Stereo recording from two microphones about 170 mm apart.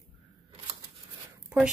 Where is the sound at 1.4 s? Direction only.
5° right (ahead or behind).